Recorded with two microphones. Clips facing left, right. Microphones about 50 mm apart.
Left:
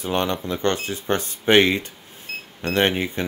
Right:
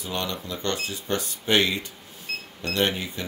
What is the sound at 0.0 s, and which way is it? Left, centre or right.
Speech, left.